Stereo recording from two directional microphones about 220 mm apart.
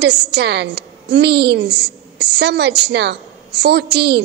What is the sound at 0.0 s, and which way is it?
A woman's voice, 50° right (ahead or behind).